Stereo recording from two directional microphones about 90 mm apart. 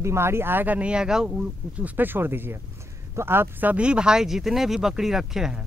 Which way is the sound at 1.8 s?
20° right (ahead or behind).